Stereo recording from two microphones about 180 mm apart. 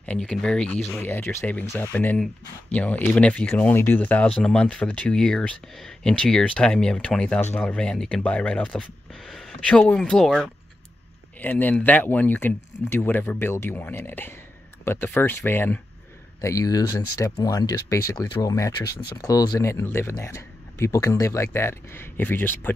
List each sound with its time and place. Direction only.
0.0 s speech: 5° left (ahead or behind)